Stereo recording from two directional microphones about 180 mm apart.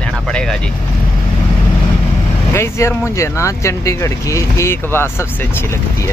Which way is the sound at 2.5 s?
15° left (ahead or behind).